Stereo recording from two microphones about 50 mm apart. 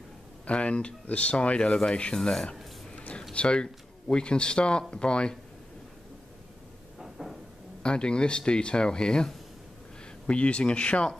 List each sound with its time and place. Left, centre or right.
0.5 s speech: left
7.0 s a sound: centre
7.8 s speech: centre